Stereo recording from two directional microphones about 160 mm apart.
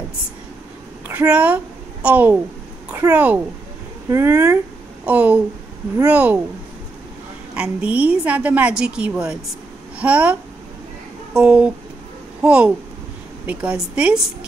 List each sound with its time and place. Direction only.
1.0 s a woman's voice: 10° right (ahead or behind)
7.5 s a woman's voice: 5° right (ahead or behind)
11.3 s a woman's voice: 5° right (ahead or behind)